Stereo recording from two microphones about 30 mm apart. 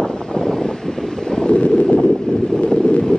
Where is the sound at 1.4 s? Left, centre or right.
Left.